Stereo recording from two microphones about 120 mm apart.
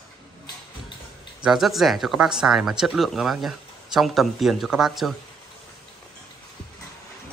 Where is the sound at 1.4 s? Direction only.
5° right (ahead or behind).